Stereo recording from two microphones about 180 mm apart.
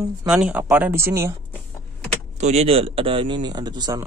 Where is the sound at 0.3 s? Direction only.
5° right (ahead or behind).